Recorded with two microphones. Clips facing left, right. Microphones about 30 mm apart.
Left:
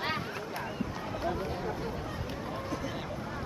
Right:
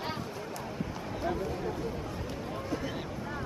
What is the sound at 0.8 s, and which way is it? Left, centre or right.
Run, centre.